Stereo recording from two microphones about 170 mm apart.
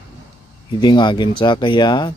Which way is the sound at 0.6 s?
25° left (ahead or behind).